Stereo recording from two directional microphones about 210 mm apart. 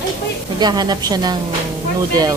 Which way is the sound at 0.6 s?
20° right (ahead or behind).